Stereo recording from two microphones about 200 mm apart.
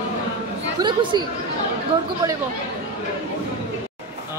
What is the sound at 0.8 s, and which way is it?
Speech, 20° right (ahead or behind).